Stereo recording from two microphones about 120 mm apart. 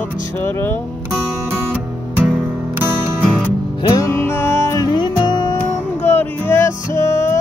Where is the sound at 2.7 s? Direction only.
25° right (ahead or behind).